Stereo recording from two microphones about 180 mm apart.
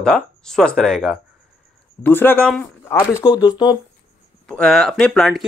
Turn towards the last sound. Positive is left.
turn(degrees=0)  # may be behind; listen again after turning